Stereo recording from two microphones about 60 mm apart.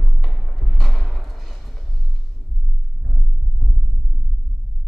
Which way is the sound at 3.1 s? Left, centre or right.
Centre.